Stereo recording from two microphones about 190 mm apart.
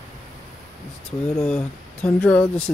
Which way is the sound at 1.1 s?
5° left (ahead or behind).